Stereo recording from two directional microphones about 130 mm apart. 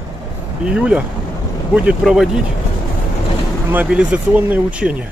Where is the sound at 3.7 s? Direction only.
10° right (ahead or behind).